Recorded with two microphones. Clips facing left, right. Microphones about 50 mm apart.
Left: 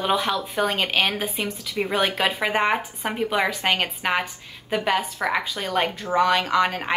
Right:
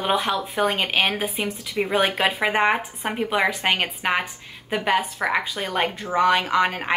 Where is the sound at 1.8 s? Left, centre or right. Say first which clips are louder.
Right 2 dB; centre.